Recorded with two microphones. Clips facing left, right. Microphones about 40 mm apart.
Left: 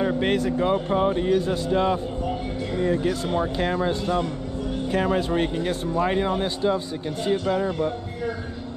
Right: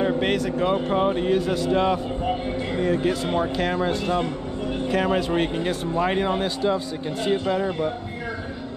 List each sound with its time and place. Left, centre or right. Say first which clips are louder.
0.2 s speech: even; right
1.2 s speech: right 1 dB; right
3.5 s speech: right 1 dB; right